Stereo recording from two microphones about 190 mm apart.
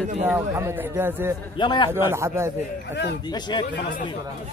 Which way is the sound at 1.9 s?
15° right (ahead or behind).